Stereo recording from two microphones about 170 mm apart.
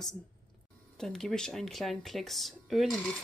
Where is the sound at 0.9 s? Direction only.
Centre (ahead or behind).